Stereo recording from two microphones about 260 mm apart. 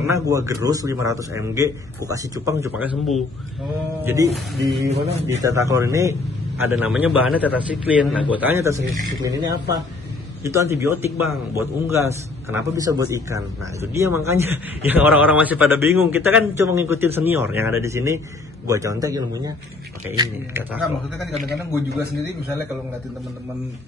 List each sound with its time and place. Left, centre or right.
0.1 s a man's voice: centre
4.9 s a man's voice: right
5.4 s a man's voice: centre